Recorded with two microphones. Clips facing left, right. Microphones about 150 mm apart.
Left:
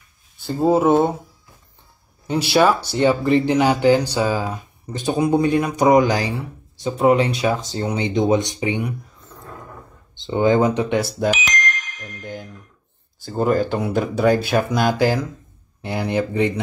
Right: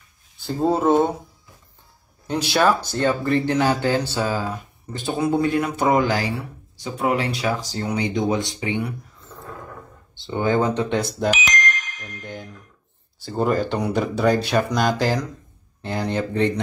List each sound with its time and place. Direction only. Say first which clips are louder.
0.4 s speech: left 4 dB; 5° left (ahead or behind)
2.5 s speech: left 3 dB; 10° left (ahead or behind)
10.1 s speech: left 4 dB; 20° left (ahead or behind)
12.0 s a sound: left 2 dB; centre (ahead or behind)
13.2 s speech: left 2 dB; centre (ahead or behind)